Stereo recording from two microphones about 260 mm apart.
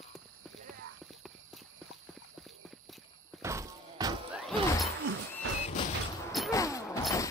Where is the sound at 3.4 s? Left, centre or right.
Centre.